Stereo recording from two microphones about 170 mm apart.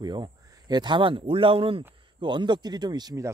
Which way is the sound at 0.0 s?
25° right (ahead or behind).